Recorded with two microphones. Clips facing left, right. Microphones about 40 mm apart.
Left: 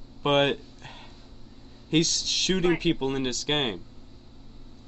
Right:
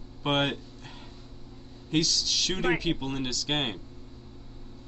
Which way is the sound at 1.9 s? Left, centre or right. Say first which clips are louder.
Left 2 dB; left.